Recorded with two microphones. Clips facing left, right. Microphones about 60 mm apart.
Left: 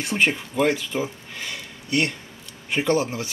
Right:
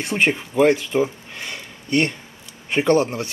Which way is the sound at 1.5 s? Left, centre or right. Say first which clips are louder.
Right 4 dB; right.